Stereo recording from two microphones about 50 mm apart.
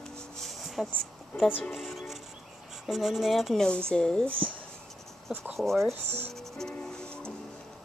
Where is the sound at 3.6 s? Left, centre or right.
Centre.